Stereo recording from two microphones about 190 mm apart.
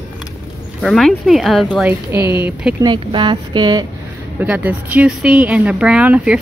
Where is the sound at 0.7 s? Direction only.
Centre (ahead or behind).